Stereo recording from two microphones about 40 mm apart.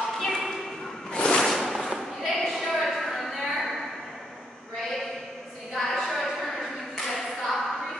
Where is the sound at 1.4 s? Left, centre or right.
Centre.